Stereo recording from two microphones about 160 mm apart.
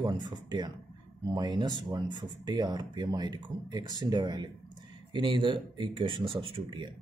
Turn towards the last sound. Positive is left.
turn(degrees=-30)  # may be behind; listen again after turning